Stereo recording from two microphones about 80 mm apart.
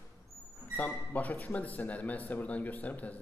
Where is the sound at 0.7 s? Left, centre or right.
Centre.